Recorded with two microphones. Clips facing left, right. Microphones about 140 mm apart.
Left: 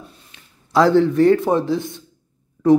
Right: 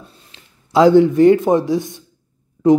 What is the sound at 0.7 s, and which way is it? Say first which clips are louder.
A man's voice: right 4 dB; 15° right (ahead or behind).